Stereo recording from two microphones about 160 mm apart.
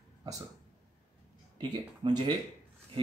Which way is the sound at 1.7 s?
25° right (ahead or behind).